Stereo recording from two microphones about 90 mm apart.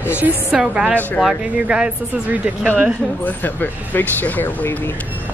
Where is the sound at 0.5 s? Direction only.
10° right (ahead or behind).